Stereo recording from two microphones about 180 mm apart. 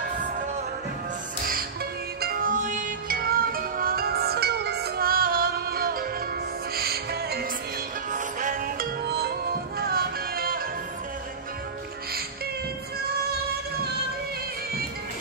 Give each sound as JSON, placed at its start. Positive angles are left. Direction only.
{"t": 2.1, "sound": "music", "side_deg": -55}
{"t": 8.1, "sound": "music", "side_deg": -45}